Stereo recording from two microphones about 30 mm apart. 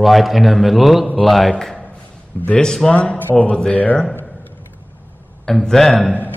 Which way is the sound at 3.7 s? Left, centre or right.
Left.